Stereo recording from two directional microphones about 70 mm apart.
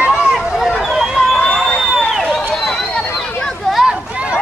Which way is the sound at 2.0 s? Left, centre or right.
Centre.